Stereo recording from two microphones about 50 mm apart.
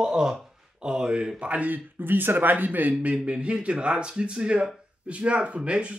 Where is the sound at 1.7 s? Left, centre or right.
Right.